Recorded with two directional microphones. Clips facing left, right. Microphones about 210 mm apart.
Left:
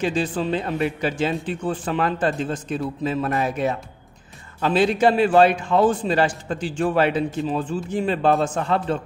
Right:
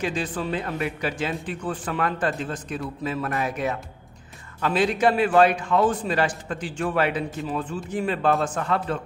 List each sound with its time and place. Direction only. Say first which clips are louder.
0.0 s a man's voice: left 4 dB; 30° left (ahead or behind)